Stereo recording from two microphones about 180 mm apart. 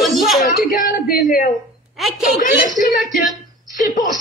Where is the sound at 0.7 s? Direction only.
50° left (ahead or behind).